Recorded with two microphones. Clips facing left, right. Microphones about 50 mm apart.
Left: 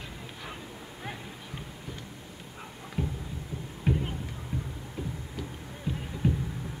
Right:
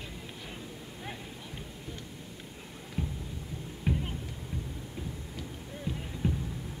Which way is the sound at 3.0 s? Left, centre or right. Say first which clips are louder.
Left 3 dB; centre.